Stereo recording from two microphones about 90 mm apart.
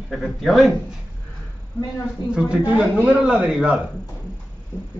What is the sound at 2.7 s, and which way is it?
A man's voice, 15° right (ahead or behind).